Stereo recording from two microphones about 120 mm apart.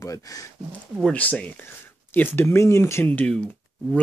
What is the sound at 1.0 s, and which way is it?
Speech, 10° left (ahead or behind).